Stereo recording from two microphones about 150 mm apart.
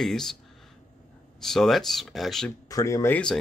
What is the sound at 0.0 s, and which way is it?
Speech, 5° left (ahead or behind).